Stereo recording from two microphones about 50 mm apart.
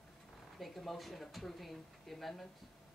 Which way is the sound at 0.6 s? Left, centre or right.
Centre.